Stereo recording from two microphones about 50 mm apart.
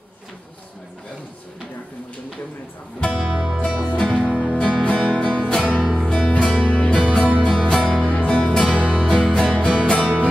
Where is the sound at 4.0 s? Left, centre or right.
Left.